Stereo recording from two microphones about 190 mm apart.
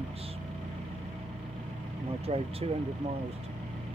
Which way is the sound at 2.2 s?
30° right (ahead or behind).